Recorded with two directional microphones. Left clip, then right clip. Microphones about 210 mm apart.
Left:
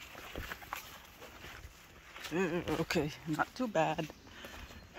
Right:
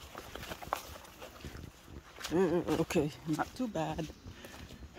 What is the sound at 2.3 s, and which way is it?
Speech, 20° right (ahead or behind).